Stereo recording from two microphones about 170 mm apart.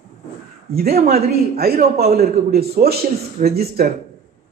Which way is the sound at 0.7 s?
65° right (ahead or behind).